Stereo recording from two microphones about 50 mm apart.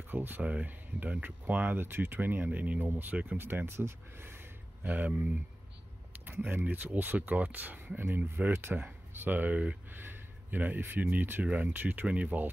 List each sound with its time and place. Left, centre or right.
0.1 s speech: right
0.4 s speech: right
1.8 s speech: right
4.8 s speech: right
6.4 s speech: right
9.8 s speech: right
11.4 s speech: right